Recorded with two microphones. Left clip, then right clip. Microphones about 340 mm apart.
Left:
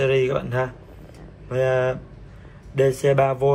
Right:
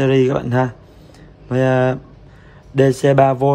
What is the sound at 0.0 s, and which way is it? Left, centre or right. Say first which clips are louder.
Speech: right 4 dB; right.